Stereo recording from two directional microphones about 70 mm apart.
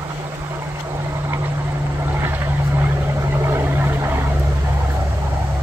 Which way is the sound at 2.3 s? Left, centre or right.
Right.